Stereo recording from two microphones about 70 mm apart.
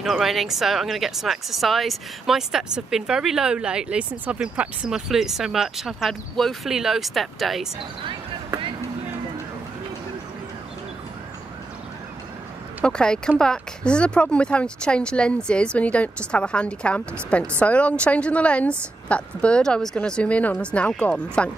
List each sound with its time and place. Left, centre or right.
0.0 s speech: centre
4.8 s speech: centre
12.8 s speech: centre